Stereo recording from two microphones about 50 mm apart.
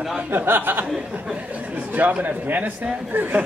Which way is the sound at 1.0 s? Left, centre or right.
Right.